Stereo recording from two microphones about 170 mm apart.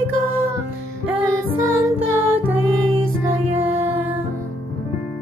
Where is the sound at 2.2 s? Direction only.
15° right (ahead or behind).